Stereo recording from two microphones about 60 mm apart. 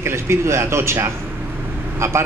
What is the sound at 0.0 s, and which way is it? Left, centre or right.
A man's voice, right.